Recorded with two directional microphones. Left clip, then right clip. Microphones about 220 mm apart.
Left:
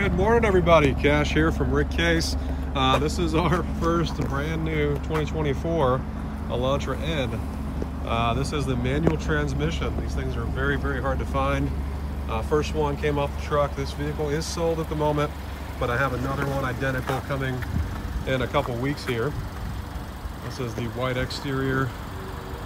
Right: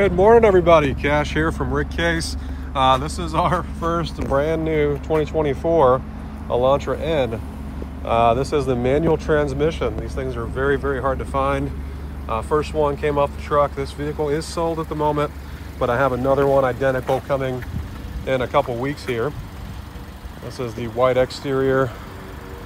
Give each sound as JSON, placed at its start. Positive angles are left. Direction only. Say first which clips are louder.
{"t": 0.0, "sound": "speech", "louder": "right 9 dB", "side_deg": 0}
{"t": 20.5, "sound": "speech", "louder": "right 8 dB", "side_deg": 0}